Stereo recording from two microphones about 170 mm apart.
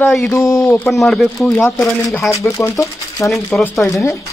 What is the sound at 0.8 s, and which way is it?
Speech, centre (ahead or behind).